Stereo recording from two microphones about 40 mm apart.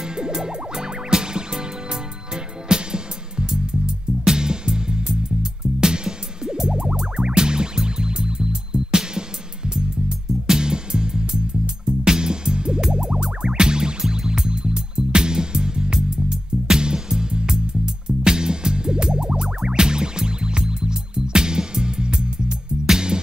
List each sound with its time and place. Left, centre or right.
0.0 s music: centre